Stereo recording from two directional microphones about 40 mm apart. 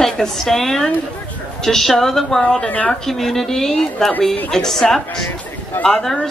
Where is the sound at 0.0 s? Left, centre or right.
Centre.